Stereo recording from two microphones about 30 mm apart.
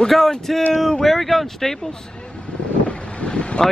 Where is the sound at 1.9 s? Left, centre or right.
Left.